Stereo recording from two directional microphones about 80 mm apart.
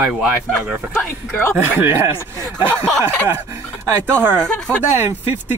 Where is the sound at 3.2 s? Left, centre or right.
Right.